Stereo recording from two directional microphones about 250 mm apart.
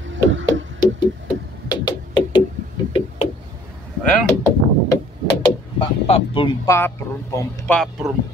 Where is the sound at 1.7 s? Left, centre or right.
Centre.